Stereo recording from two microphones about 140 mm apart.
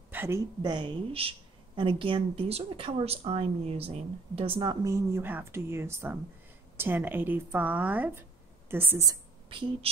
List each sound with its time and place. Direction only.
0.1 s a sound: 15° right (ahead or behind)
0.6 s a woman's voice: 35° right (ahead or behind)
9.5 s a woman's voice: 35° right (ahead or behind)